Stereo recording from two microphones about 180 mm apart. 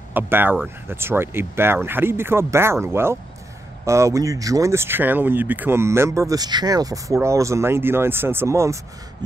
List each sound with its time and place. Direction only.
0.1 s speech: 10° right (ahead or behind)